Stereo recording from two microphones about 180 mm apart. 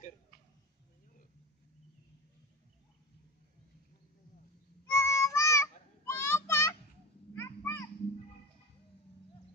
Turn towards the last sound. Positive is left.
turn(degrees=15)  # may be behind; listen again after turning